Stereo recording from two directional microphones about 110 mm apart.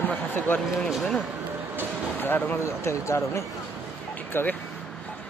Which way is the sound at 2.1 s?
15° left (ahead or behind).